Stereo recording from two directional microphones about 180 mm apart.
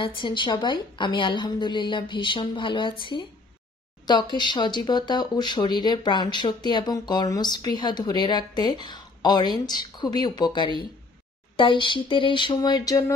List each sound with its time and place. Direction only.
0.0 s speech: 25° left (ahead or behind)